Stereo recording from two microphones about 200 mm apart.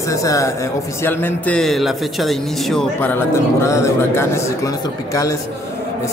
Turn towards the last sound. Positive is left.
turn(degrees=15)  # may be behind; listen again after turning